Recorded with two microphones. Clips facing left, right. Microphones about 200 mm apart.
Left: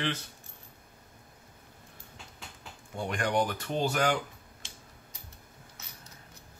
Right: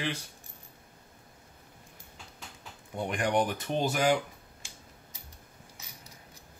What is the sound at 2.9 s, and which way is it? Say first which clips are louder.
Speech: right 1 dB; 15° right (ahead or behind).